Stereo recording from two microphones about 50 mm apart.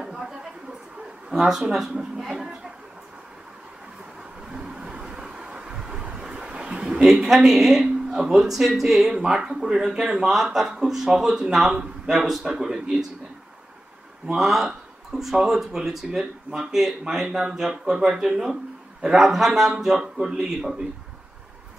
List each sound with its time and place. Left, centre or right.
1.3 s speech: centre
4.5 s vehicle: centre
8.1 s speech: centre
14.3 s speech: centre